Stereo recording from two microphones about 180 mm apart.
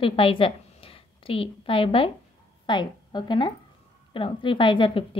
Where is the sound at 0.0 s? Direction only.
30° left (ahead or behind).